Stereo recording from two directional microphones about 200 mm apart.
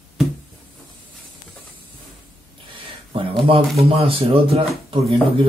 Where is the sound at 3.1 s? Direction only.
25° right (ahead or behind).